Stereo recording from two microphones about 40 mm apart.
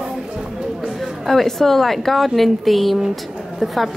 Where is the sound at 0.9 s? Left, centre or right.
Centre.